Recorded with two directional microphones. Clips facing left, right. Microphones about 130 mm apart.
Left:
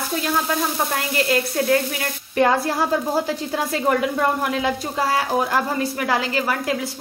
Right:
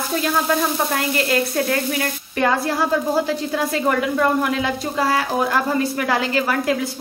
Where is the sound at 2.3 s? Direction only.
25° left (ahead or behind).